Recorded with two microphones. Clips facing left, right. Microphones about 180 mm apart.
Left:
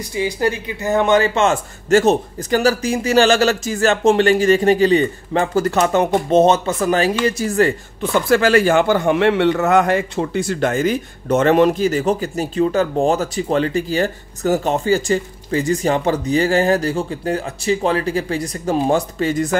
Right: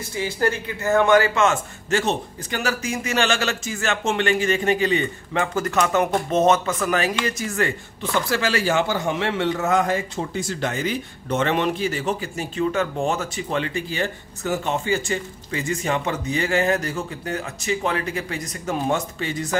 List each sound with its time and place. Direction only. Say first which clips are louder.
0.0 s speech: left 4 dB; 15° left (ahead or behind)
1.9 s speech: left 9 dB; 40° left (ahead or behind)
8.0 s speech: left 8 dB; 50° left (ahead or behind)